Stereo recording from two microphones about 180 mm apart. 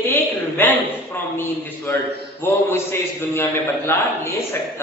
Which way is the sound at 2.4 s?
15° left (ahead or behind).